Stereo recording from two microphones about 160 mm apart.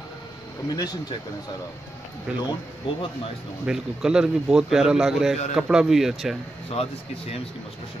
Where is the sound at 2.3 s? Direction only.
5° right (ahead or behind).